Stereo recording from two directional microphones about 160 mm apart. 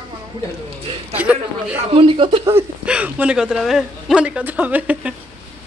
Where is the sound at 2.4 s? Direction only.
10° right (ahead or behind).